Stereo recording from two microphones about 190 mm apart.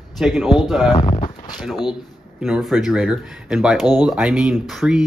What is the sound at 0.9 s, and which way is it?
Speech, 25° left (ahead or behind).